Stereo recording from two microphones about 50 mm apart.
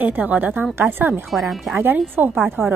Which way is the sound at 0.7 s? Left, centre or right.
Right.